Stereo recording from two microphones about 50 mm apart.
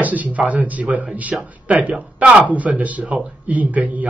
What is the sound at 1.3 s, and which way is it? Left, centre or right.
Speech, centre.